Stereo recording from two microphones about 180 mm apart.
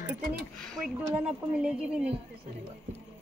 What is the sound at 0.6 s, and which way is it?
Speech, centre (ahead or behind).